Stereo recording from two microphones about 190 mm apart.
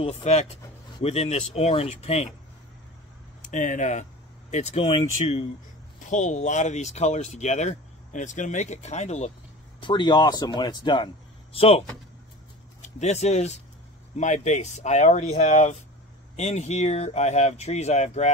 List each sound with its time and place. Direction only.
0.0 s speech: 35° left (ahead or behind)
3.4 s speech: 40° left (ahead or behind)
9.8 s speech: 25° left (ahead or behind)
12.8 s speech: 35° left (ahead or behind)